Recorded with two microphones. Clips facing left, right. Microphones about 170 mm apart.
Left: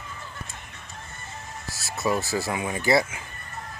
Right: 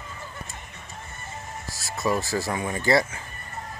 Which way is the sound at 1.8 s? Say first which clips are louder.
Even; 5° left (ahead or behind).